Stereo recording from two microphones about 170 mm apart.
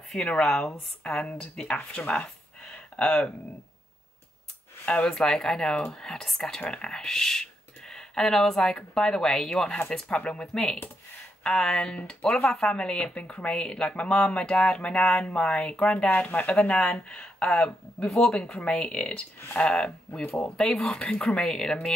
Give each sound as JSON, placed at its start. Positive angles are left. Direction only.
{"t": 0.1, "sound": "speech", "side_deg": 5}
{"t": 4.8, "sound": "speech", "side_deg": 5}